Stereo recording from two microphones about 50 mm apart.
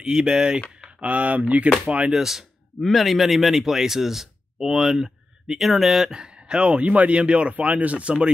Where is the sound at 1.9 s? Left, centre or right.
Right.